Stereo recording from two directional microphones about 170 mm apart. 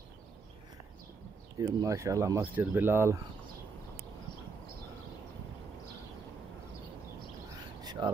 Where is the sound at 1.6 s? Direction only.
20° right (ahead or behind).